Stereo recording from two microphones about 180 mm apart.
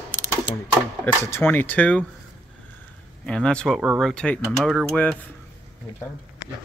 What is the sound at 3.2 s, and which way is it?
Speech, 5° left (ahead or behind).